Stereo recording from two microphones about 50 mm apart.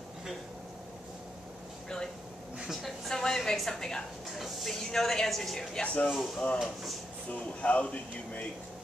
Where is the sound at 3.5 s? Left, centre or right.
Centre.